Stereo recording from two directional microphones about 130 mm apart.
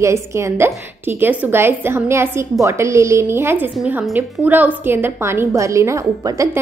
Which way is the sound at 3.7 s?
5° right (ahead or behind).